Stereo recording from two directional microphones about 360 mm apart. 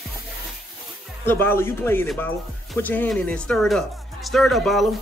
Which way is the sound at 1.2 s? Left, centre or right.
Centre.